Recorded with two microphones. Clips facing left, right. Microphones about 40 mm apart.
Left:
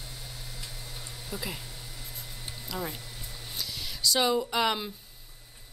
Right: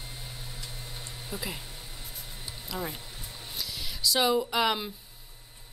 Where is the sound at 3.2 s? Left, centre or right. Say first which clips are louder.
Even; centre.